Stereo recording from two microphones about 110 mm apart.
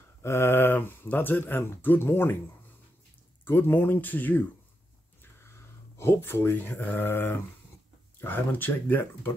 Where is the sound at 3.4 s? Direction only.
20° left (ahead or behind).